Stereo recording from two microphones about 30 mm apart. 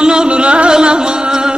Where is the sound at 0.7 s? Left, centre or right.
Right.